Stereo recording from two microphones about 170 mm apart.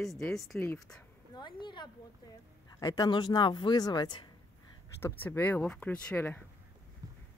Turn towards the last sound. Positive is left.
turn(degrees=10)  # may be behind; listen again after turning